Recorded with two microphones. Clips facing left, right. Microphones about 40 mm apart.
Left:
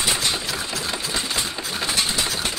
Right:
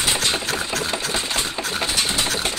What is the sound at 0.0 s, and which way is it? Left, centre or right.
Sewing machine, right.